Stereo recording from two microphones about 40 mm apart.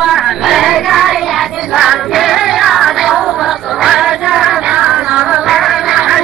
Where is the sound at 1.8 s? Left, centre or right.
Centre.